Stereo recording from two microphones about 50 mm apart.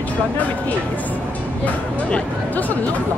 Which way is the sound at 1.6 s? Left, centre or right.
Left.